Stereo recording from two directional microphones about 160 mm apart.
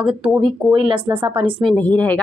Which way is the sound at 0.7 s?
30° right (ahead or behind).